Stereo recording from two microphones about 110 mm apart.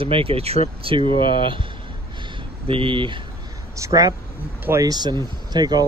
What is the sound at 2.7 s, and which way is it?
Speech, 55° right (ahead or behind).